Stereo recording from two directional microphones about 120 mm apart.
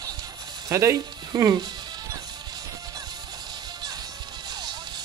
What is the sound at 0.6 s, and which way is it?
Speech, 25° right (ahead or behind).